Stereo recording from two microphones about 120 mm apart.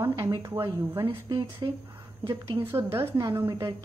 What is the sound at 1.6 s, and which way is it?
Speech, 30° right (ahead or behind).